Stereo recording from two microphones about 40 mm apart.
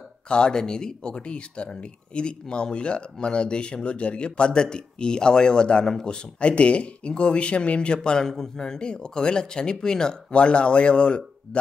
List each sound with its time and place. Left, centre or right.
0.3 s speech: centre
10.3 s speech: left